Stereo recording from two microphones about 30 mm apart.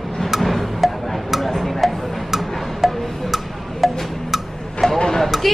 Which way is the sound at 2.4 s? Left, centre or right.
Centre.